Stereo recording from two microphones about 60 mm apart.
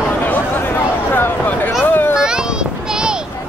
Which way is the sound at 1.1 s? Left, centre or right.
Left.